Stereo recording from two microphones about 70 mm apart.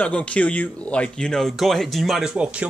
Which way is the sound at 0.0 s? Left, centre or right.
Centre.